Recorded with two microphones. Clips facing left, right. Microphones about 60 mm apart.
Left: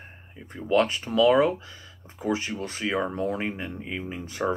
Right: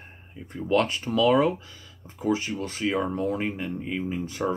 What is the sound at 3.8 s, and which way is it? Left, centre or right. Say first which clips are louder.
Speech: right 4 dB; centre.